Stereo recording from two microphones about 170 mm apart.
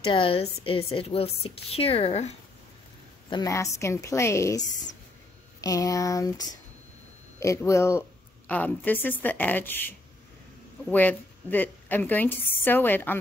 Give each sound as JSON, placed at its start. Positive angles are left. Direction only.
{"t": 0.0, "sound": "speech", "side_deg": 30}
{"t": 3.3, "sound": "a woman's voice", "side_deg": 20}
{"t": 5.6, "sound": "a sound", "side_deg": 20}
{"t": 7.3, "sound": "a woman's voice", "side_deg": 20}